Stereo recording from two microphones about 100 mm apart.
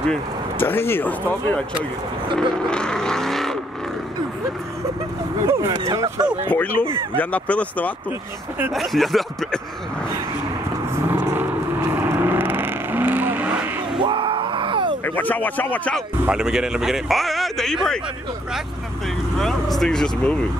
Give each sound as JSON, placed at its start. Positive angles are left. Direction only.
{"t": 0.6, "sound": "speech", "side_deg": 20}
{"t": 2.5, "sound": "vehicle", "side_deg": 10}
{"t": 5.5, "sound": "speech", "side_deg": -30}
{"t": 6.5, "sound": "speech", "side_deg": 15}
{"t": 8.7, "sound": "speech", "side_deg": 0}
{"t": 11.9, "sound": "vehicle", "side_deg": -20}
{"t": 13.9, "sound": "groan", "side_deg": -55}
{"t": 15.0, "sound": "speech", "side_deg": 15}
{"t": 16.3, "sound": "speech", "side_deg": -5}
{"t": 19.3, "sound": "speech", "side_deg": 5}